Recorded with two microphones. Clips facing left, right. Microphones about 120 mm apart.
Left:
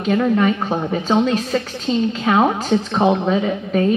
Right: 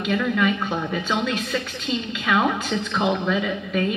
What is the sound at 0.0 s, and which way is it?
A woman's voice, 35° left (ahead or behind).